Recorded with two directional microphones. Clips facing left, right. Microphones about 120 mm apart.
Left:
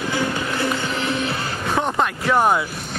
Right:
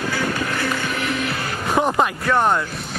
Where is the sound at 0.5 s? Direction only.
25° left (ahead or behind).